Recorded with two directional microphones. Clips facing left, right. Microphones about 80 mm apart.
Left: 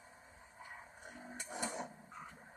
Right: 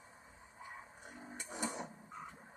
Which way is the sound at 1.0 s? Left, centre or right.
Right.